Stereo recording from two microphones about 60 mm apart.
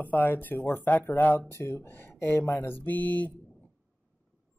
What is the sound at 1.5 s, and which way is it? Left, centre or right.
Speech, left.